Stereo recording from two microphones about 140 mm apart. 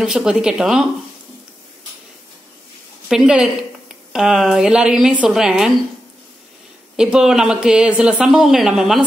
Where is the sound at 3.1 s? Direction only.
5° right (ahead or behind).